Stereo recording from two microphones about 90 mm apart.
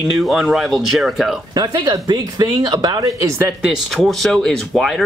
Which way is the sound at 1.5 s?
45° right (ahead or behind).